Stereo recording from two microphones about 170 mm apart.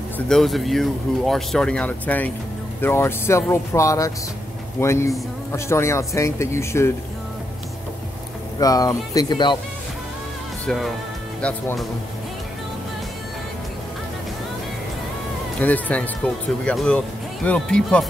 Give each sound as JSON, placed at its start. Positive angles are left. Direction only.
{"t": 0.3, "sound": "speech", "side_deg": 0}
{"t": 8.5, "sound": "speech", "side_deg": 20}
{"t": 10.7, "sound": "speech", "side_deg": 5}
{"t": 15.6, "sound": "speech", "side_deg": 10}